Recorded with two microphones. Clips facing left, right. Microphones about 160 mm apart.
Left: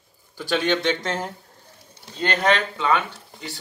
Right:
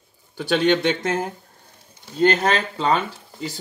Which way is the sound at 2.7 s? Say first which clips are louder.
Right 1 dB; 35° right (ahead or behind).